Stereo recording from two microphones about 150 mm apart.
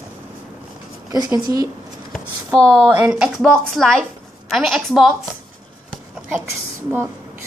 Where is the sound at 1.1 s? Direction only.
25° right (ahead or behind).